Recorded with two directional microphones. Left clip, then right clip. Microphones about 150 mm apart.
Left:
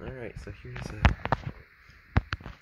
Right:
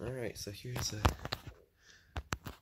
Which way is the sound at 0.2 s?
40° right (ahead or behind).